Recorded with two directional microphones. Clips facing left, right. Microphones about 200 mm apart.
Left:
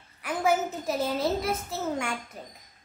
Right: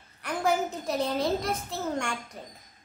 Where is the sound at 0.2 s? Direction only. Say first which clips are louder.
Left 1 dB; 5° left (ahead or behind).